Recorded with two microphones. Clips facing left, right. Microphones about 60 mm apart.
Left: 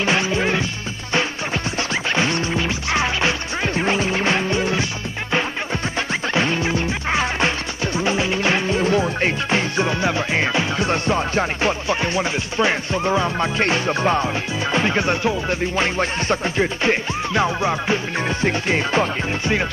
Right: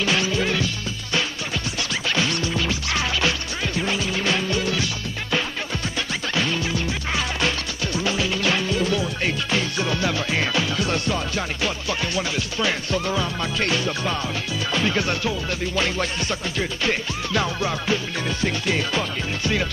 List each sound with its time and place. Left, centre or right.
0.0 s music: left
1.8 s music: left
5.9 s music: left